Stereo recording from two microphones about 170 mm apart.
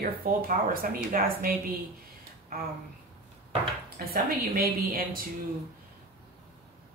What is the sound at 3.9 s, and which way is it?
Speech, 60° right (ahead or behind).